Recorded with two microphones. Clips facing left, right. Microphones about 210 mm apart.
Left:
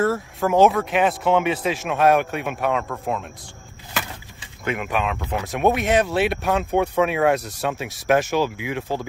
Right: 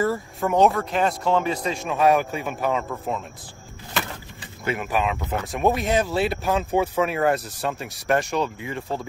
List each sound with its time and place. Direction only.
0.0 s speech: centre (ahead or behind)
4.6 s speech: 5° right (ahead or behind)
8.5 s speech: 90° left